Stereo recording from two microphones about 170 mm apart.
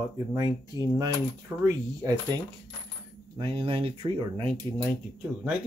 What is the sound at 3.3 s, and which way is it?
A man's voice, 30° right (ahead or behind).